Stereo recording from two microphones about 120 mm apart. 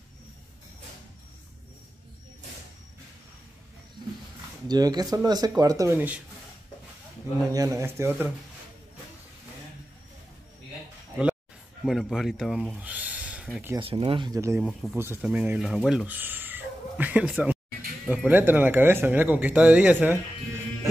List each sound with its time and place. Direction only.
4.6 s speech: 35° right (ahead or behind)
5.9 s speech: 15° right (ahead or behind)
7.5 s speech: 25° right (ahead or behind)
11.8 s speech: centre (ahead or behind)
13.7 s speech: 50° right (ahead or behind)
14.3 s speech: 25° right (ahead or behind)
14.6 s speech: 5° right (ahead or behind)
16.1 s a sound: 15° right (ahead or behind)
18.0 s speech: 10° right (ahead or behind)